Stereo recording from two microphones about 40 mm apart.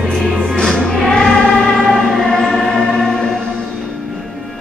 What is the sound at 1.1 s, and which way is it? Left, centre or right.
Choir, centre.